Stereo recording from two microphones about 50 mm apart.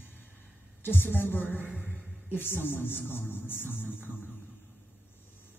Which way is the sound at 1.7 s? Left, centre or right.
Right.